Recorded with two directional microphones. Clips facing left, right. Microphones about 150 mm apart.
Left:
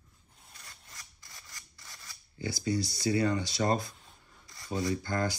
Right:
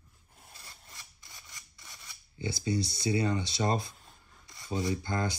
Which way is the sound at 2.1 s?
25° right (ahead or behind).